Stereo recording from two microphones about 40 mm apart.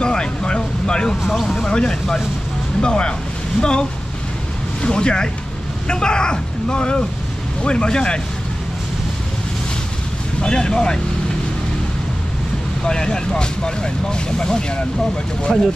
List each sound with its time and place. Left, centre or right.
0.0 s speech: left
1.2 s speech: centre
4.8 s speech: left
10.4 s speech: centre
12.8 s speech: centre
15.5 s speech: centre